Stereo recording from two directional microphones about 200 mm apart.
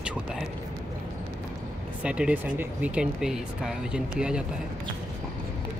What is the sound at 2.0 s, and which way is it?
Speech, 5° right (ahead or behind).